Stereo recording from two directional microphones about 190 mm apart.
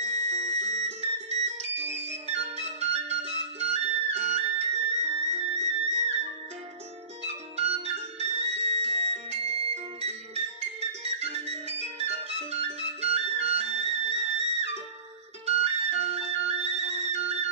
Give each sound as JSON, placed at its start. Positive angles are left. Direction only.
{"t": 0.0, "sound": "music", "side_deg": -35}
{"t": 2.0, "sound": "flute", "side_deg": -35}
{"t": 7.2, "sound": "music", "side_deg": -35}
{"t": 15.4, "sound": "flute", "side_deg": -35}